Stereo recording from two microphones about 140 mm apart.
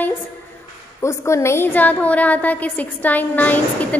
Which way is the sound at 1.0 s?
20° left (ahead or behind).